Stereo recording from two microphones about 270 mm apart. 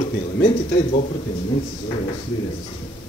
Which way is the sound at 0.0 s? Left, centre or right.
Left.